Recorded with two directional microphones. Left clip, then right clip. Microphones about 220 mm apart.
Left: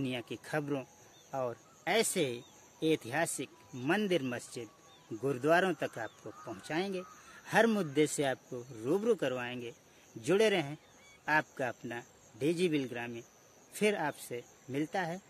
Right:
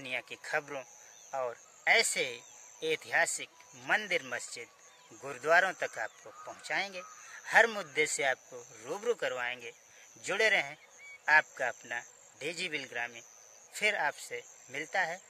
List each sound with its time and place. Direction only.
0.0 s speech: 5° left (ahead or behind)
1.3 s cricket: 5° left (ahead or behind)
5.2 s speech: 5° left (ahead or behind)